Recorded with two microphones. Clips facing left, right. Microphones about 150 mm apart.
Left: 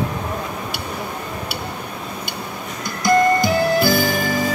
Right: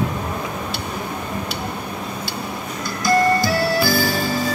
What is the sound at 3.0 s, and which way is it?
Music, 20° left (ahead or behind).